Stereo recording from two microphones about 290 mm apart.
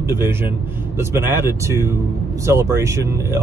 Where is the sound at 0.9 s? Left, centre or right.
Centre.